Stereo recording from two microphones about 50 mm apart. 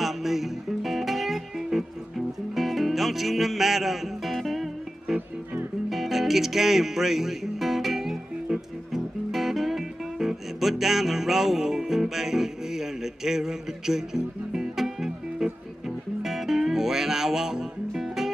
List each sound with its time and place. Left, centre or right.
0.0 s music: centre